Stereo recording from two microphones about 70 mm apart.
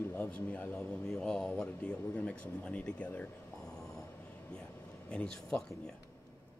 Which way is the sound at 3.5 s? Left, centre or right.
Centre.